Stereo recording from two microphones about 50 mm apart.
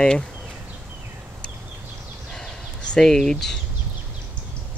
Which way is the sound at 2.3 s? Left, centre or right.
Centre.